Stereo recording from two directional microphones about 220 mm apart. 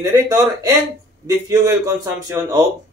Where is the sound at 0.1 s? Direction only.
15° right (ahead or behind).